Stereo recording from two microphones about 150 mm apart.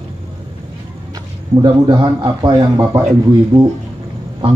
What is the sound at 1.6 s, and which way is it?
A man's voice, 30° right (ahead or behind).